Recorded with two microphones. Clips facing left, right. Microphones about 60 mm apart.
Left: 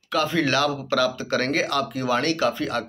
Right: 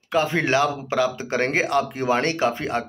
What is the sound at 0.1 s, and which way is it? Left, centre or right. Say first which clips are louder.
Speech: right 1 dB; right.